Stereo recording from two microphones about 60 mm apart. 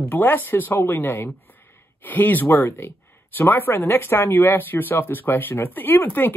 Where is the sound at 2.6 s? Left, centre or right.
Left.